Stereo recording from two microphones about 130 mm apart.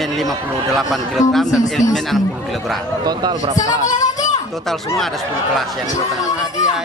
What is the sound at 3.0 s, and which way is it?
Speech, 30° right (ahead or behind).